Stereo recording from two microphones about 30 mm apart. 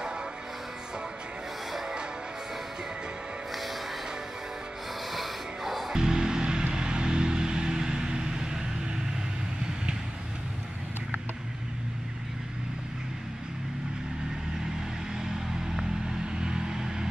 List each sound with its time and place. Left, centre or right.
5.1 s music: centre
5.9 s music: right
16.1 s vehicle: right